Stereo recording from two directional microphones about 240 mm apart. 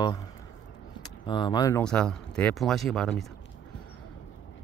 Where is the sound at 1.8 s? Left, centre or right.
Centre.